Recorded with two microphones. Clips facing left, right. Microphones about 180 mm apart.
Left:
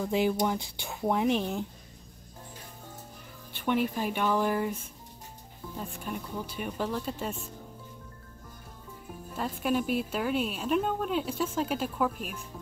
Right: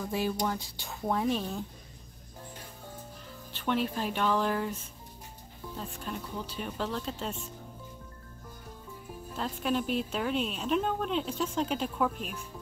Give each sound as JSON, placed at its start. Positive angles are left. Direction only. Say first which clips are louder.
{"t": 0.1, "sound": "a woman's voice", "louder": "left 4 dB", "side_deg": 20}
{"t": 3.5, "sound": "a woman's voice", "louder": "left 2 dB", "side_deg": 10}
{"t": 5.8, "sound": "a woman's voice", "louder": "left 2 dB", "side_deg": 10}
{"t": 9.4, "sound": "a woman's voice", "louder": "left 2 dB", "side_deg": 10}